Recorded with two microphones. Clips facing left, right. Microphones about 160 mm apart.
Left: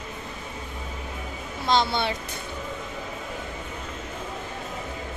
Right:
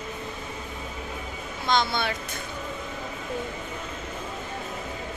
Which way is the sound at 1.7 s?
30° left (ahead or behind).